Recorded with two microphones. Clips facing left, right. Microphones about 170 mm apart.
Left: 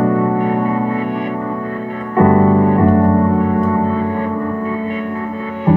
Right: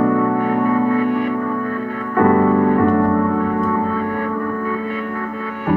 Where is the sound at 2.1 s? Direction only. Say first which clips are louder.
Left 2 dB; 25° left (ahead or behind).